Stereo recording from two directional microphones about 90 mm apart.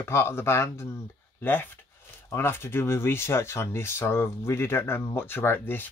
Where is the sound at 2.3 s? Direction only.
25° left (ahead or behind).